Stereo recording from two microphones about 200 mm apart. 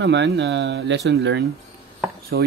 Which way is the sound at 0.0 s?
60° right (ahead or behind).